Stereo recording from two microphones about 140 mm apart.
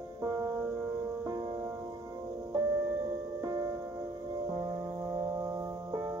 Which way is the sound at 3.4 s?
25° right (ahead or behind).